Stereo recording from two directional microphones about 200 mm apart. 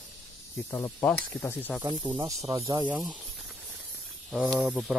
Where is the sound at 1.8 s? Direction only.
20° right (ahead or behind).